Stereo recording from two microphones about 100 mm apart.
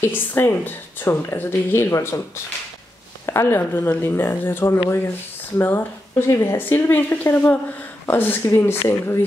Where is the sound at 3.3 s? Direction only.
25° left (ahead or behind).